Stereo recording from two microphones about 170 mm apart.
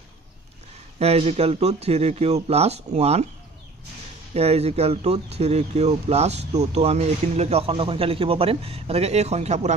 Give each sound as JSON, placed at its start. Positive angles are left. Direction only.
{"t": 0.9, "sound": "speech", "side_deg": -35}
{"t": 4.3, "sound": "speech", "side_deg": -40}